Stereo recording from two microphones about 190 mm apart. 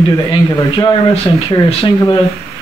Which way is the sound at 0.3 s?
25° left (ahead or behind).